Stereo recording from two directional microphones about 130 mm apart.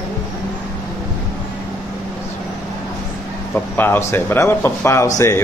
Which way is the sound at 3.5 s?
15° left (ahead or behind).